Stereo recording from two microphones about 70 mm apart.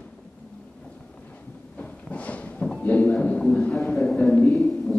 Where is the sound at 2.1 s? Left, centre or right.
Centre.